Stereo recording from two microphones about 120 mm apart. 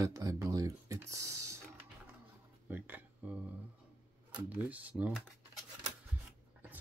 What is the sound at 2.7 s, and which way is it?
Speech, 15° right (ahead or behind).